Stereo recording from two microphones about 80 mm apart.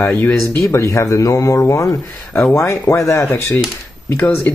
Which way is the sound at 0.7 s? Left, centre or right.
Left.